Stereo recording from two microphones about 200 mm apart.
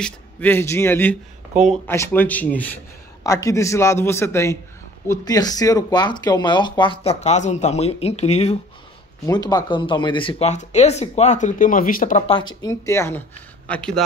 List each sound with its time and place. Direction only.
0.0 s a man's voice: 10° left (ahead or behind); by 8.5 s 35° left (ahead or behind)
9.2 s speech: 20° left (ahead or behind); by 12.3 s 40° left (ahead or behind)
12.6 s a man's voice: 15° left (ahead or behind)